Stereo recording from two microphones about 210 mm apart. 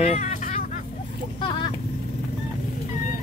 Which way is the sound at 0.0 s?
35° left (ahead or behind).